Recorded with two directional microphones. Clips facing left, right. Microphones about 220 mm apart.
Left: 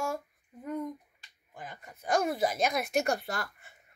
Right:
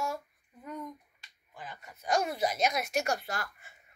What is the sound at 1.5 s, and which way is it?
Speech, 45° left (ahead or behind).